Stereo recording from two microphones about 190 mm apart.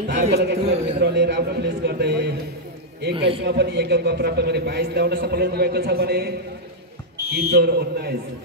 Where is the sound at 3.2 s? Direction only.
30° right (ahead or behind).